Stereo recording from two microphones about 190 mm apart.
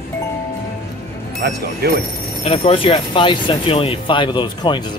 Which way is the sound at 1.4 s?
55° right (ahead or behind).